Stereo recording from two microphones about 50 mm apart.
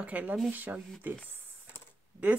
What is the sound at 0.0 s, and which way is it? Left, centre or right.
Speech, right.